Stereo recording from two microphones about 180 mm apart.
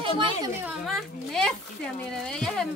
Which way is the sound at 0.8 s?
Centre (ahead or behind).